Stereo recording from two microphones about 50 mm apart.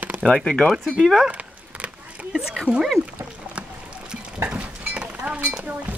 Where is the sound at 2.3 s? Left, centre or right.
Centre.